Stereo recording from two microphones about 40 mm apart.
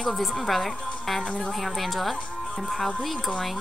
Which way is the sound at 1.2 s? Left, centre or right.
Left.